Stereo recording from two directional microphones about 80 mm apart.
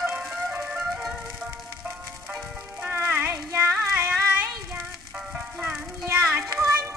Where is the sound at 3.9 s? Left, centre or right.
Right.